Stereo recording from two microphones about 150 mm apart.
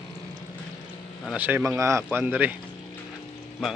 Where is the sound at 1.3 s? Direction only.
10° right (ahead or behind).